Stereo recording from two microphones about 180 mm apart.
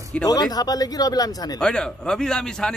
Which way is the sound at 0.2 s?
20° left (ahead or behind).